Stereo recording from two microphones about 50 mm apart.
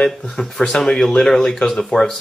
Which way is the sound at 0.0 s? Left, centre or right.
Centre.